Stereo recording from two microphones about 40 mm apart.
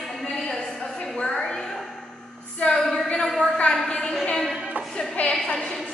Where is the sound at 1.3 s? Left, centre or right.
Centre.